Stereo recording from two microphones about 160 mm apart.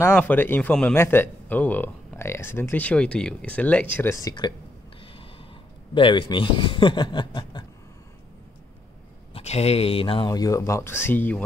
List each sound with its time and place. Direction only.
0.0 s speech: 10° left (ahead or behind)
5.0 s snort: 35° left (ahead or behind)
5.9 s speech: 30° left (ahead or behind)
9.3 s speech: 40° left (ahead or behind)
10.2 s speech: 20° left (ahead or behind)